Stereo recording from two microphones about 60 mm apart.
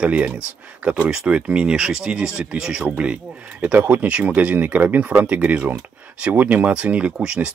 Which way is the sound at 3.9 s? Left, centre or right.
Right.